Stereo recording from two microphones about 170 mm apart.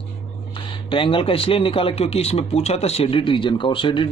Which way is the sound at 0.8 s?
30° left (ahead or behind).